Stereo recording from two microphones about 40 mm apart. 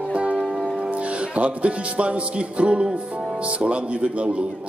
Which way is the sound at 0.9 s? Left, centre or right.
Right.